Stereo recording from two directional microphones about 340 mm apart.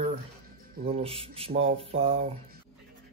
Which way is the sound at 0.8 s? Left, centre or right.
Centre.